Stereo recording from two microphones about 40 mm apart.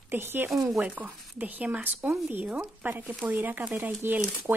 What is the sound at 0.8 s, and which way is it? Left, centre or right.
Speech, right.